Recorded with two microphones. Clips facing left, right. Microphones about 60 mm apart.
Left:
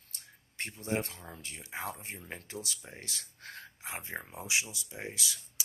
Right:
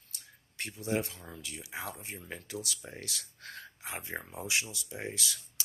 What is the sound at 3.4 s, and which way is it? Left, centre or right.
Speech, centre.